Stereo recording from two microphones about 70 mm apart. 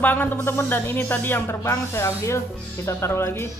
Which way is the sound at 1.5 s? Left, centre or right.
Left.